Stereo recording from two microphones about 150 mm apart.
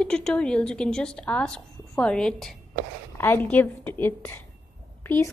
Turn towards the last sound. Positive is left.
turn(degrees=15)  # may be behind; listen again after turning